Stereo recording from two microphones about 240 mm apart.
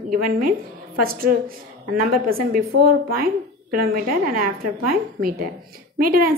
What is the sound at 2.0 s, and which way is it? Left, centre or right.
Speech, right.